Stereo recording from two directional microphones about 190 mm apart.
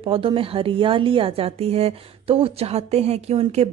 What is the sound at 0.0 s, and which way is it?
A woman's voice, 30° right (ahead or behind).